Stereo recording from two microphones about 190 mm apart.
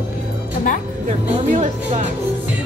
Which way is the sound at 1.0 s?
40° right (ahead or behind).